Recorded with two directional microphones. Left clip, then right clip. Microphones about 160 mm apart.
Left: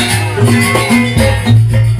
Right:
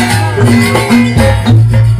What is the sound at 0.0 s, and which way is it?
Music, 25° left (ahead or behind).